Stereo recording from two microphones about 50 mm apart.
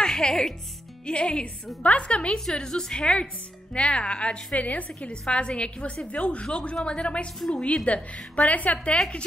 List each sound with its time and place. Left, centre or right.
0.0 s a woman's voice: centre; by 8.7 s left
8.8 s a woman's voice: centre